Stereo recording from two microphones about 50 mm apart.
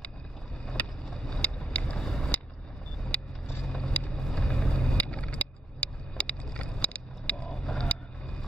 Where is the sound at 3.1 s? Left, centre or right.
Left.